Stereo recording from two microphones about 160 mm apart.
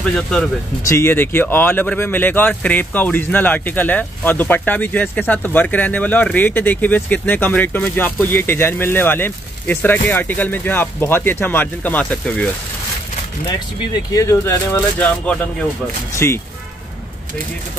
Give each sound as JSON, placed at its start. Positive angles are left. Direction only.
{"t": 0.1, "sound": "speech", "side_deg": 5}
{"t": 14.1, "sound": "speech", "side_deg": 20}